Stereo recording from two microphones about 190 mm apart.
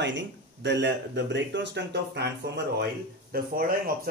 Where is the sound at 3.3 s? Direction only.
50° right (ahead or behind).